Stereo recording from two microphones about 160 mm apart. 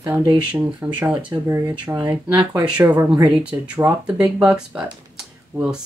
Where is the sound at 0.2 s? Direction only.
30° right (ahead or behind).